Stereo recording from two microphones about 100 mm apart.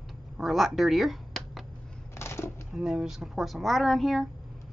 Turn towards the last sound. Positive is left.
turn(degrees=0)  # may be behind; listen again after turning